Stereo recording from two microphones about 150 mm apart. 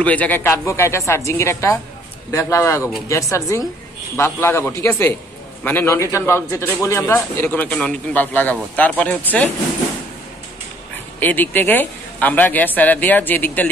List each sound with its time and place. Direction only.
0.0 s a man's voice: 10° left (ahead or behind)
11.1 s a man's voice: 10° left (ahead or behind)